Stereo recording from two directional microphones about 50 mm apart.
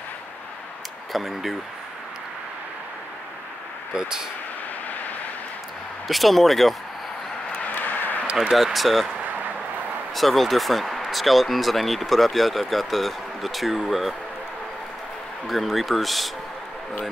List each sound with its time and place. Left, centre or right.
1.1 s speech: centre
3.9 s speech: centre
6.0 s speech: centre
7.7 s a sound: left
8.4 s speech: centre
10.1 s speech: centre
15.4 s speech: centre